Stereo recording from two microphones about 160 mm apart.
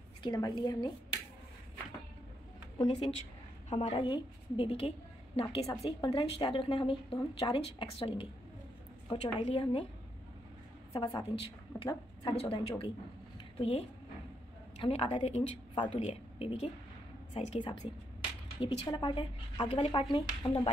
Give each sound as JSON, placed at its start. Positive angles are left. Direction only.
{"t": 0.2, "sound": "a woman's voice", "side_deg": 25}
{"t": 3.7, "sound": "a woman's voice", "side_deg": 35}
{"t": 10.9, "sound": "a woman's voice", "side_deg": 25}